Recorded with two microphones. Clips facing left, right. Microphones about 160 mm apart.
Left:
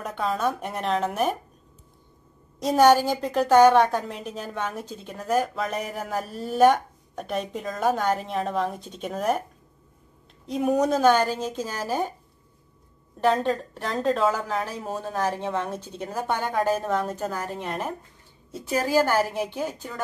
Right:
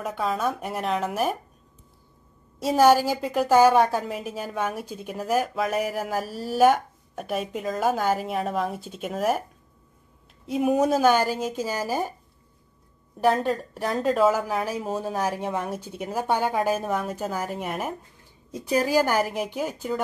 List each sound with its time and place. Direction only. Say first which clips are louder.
0.0 s a woman's voice: even; 5° right (ahead or behind)
2.6 s a woman's voice: even; 5° right (ahead or behind)
10.4 s a woman's voice: right 1 dB; 5° right (ahead or behind)
13.2 s a woman's voice: even; 10° right (ahead or behind)